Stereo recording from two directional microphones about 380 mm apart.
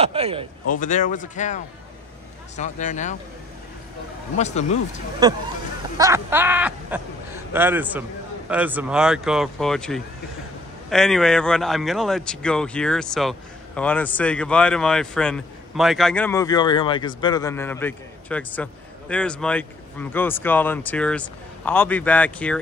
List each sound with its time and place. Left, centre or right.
0.0 s speech: centre
0.7 s speech: centre
4.4 s speech: centre
5.2 s speech: centre